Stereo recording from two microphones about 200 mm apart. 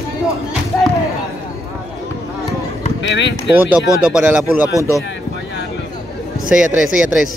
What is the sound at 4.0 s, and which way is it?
Speech, 5° right (ahead or behind).